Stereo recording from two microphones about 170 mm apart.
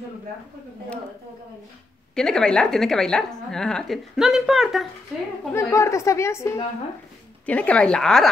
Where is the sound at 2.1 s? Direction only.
5° left (ahead or behind).